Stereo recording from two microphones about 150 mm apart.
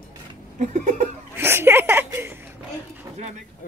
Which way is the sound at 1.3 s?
15° right (ahead or behind).